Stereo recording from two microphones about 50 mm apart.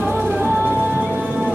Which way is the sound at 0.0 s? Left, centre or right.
Right.